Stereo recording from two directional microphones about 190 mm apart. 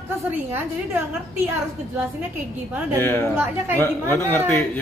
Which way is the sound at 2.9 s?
10° left (ahead or behind).